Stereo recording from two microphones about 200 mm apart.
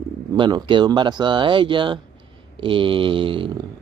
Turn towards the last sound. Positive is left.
turn(degrees=-25)  # may be behind; listen again after turning